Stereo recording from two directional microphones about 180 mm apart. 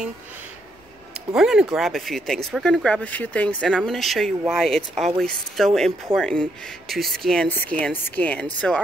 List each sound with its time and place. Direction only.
1.1 s speech: 5° right (ahead or behind)